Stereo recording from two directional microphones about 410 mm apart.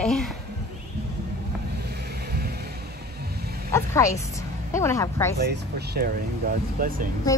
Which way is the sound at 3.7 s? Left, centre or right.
Centre.